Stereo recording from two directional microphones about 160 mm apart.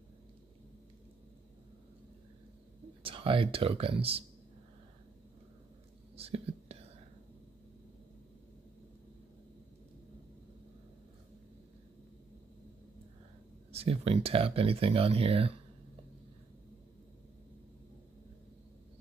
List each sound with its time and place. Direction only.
3.0 s speech: 35° right (ahead or behind)
6.1 s whispering: 40° right (ahead or behind)
13.7 s speech: 40° right (ahead or behind)